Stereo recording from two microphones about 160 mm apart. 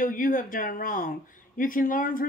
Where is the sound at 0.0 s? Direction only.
60° left (ahead or behind).